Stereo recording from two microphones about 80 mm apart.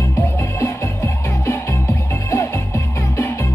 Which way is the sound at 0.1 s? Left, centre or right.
Left.